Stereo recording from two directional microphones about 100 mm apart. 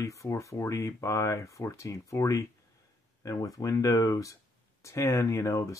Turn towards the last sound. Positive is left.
turn(degrees=30)  # may be behind; listen again after turning